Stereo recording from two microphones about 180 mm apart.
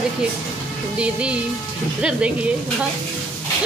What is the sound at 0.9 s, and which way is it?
A woman's voice, 5° right (ahead or behind).